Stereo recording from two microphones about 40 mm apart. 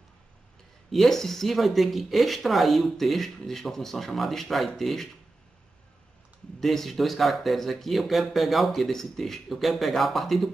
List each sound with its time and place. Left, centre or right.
0.9 s speech: centre
6.6 s speech: centre